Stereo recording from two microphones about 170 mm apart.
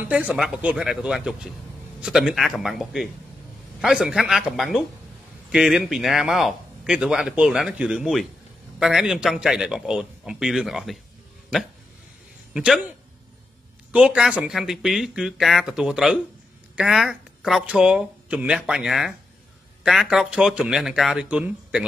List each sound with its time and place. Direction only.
0.1 s speech: 5° right (ahead or behind)
13.9 s speech: 5° right (ahead or behind)